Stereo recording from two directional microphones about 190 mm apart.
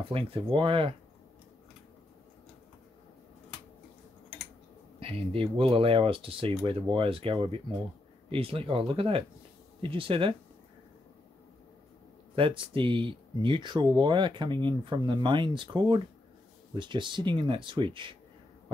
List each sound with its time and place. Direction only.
0.1 s speech: 30° right (ahead or behind)
5.0 s speech: 30° right (ahead or behind)
12.4 s speech: 25° right (ahead or behind)